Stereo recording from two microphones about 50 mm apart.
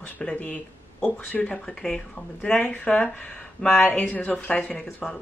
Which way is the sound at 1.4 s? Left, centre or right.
Centre.